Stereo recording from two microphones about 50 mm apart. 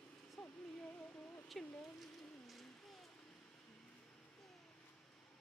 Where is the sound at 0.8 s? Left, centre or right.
Left.